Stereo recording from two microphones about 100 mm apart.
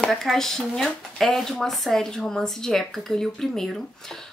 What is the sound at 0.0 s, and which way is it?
Speech, 5° left (ahead or behind).